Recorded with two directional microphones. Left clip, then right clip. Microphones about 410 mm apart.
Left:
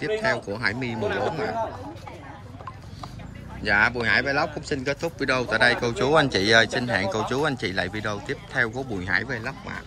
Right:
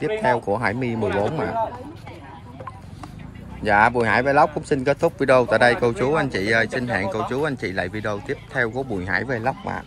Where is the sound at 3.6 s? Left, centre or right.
Centre.